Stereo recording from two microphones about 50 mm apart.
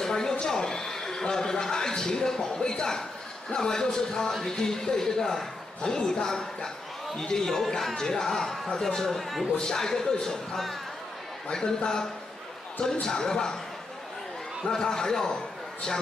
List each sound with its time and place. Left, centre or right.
0.0 s speech: centre
4.3 s speech: centre
4.6 s speech: centre
14.6 s a man's voice: centre